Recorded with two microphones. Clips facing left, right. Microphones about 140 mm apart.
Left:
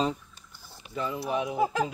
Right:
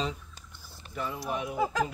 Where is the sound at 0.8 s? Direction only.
10° left (ahead or behind).